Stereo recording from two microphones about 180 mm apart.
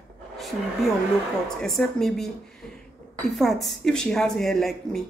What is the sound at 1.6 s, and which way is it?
Speech, centre (ahead or behind).